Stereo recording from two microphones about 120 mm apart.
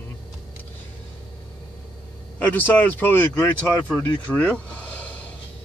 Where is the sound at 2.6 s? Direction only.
15° left (ahead or behind).